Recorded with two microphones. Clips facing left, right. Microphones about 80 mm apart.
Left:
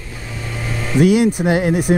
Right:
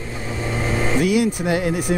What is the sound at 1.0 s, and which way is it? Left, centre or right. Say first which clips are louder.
Speech: left 8 dB; left.